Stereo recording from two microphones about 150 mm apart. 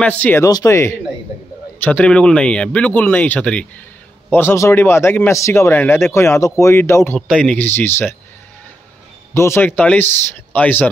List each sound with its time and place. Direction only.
0.0 s a man's voice: 10° left (ahead or behind)
0.5 s a man's voice: 20° left (ahead or behind)
7.2 s a man's voice: 5° left (ahead or behind)
9.3 s a man's voice: 15° left (ahead or behind)